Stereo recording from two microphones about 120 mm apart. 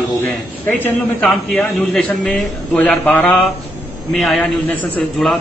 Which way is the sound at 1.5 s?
5° left (ahead or behind).